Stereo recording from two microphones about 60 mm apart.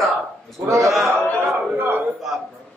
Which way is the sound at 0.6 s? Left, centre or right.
Right.